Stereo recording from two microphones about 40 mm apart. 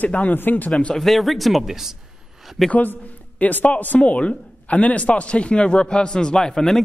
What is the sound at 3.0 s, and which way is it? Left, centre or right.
A man's voice, left.